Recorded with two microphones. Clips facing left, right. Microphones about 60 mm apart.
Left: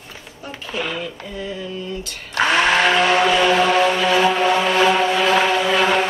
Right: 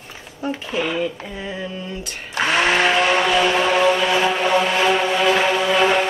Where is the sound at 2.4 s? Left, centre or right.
Centre.